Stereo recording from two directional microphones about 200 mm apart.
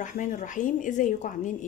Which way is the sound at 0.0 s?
40° left (ahead or behind).